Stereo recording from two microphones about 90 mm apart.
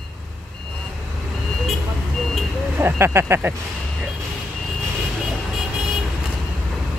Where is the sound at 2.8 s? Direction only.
30° right (ahead or behind).